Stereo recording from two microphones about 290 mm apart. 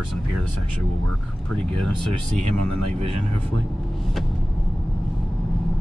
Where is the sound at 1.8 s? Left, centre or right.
Right.